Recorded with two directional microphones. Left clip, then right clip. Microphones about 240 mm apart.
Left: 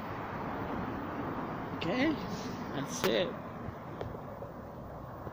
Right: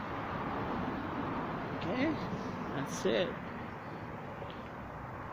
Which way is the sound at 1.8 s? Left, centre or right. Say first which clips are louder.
Left 3 dB; centre.